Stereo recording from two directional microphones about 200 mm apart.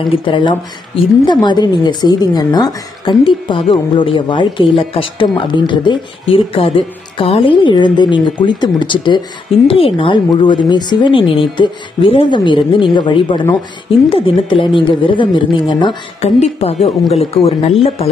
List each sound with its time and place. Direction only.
0.1 s a woman's voice: 25° left (ahead or behind)